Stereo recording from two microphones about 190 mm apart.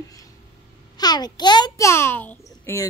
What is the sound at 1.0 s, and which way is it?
Speech, 20° left (ahead or behind).